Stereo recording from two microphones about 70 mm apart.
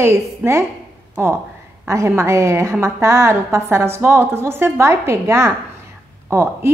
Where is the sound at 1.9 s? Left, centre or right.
Right.